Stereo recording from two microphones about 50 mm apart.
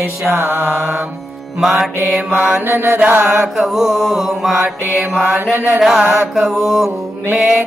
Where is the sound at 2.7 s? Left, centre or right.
Right.